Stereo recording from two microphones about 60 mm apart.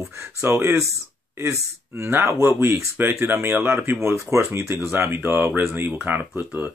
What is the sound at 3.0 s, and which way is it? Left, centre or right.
Speech, right.